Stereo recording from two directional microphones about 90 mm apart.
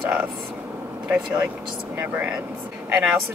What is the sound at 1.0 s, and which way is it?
A woman's voice, 15° right (ahead or behind).